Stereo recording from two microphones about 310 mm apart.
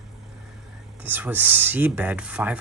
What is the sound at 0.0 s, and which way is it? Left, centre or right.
Speech, centre.